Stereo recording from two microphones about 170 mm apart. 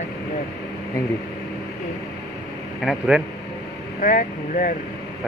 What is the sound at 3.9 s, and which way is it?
Speech, 50° left (ahead or behind).